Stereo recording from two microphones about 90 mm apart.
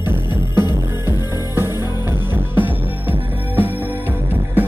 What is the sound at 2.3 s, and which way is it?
Music, 20° right (ahead or behind).